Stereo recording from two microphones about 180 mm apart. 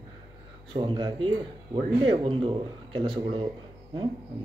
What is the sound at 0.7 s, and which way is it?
A man's voice, 25° right (ahead or behind).